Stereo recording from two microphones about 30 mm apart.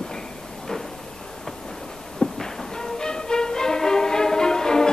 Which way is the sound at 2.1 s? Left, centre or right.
Centre.